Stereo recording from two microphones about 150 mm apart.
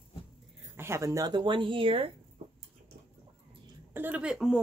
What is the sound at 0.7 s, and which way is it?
Speech, 20° right (ahead or behind).